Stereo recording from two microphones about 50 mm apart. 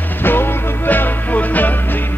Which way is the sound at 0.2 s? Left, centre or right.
Left.